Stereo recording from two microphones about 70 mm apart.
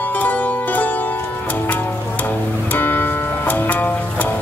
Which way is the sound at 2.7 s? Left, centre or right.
Left.